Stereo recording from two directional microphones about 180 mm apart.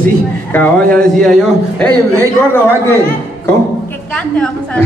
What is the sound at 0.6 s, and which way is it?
Speech, 5° left (ahead or behind).